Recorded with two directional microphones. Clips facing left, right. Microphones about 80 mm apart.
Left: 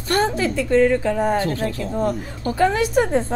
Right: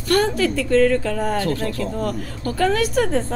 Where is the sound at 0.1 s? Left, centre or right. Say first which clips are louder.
Right 1 dB; left.